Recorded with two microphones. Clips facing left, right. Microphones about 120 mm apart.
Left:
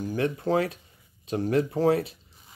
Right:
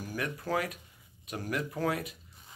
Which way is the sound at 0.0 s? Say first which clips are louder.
Left 9 dB; 25° left (ahead or behind).